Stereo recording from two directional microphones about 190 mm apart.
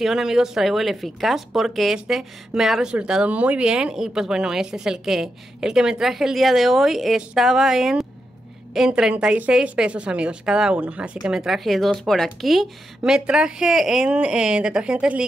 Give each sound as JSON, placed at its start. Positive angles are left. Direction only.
{"t": 0.0, "sound": "speech", "side_deg": -5}